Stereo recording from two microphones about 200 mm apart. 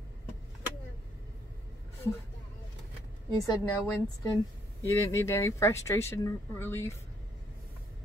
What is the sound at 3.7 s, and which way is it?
Speech, 10° left (ahead or behind).